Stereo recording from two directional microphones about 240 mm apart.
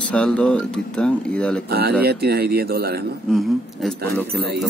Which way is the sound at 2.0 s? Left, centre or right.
Right.